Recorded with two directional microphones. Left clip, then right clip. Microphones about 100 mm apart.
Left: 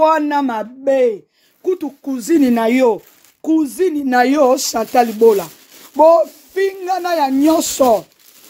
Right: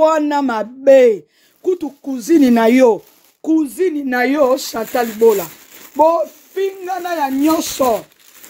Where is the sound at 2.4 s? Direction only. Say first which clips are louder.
Right 3 dB; 15° right (ahead or behind).